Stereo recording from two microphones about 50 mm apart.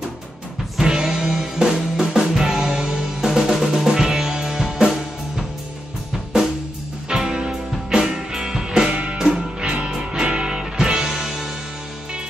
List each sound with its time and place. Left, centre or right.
0.7 s music: centre
7.1 s music: centre